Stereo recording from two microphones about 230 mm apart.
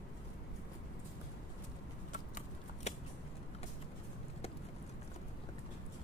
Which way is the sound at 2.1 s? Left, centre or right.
Left.